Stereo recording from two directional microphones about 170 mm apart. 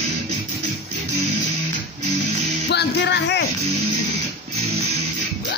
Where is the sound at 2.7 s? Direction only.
90° left.